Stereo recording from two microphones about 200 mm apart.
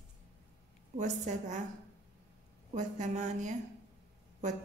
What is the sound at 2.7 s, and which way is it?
Speech, 35° right (ahead or behind).